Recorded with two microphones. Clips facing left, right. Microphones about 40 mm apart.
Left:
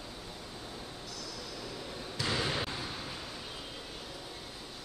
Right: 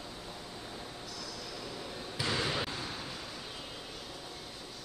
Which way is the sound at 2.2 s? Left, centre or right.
Centre.